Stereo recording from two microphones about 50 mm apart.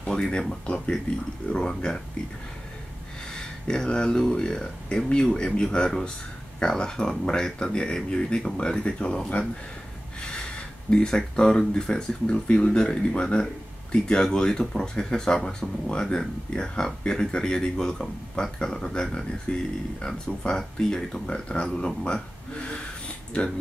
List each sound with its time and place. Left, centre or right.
0.1 s speech: centre
3.3 s speech: centre
10.9 s speech: centre
19.5 s speech: left
20.0 s speech: centre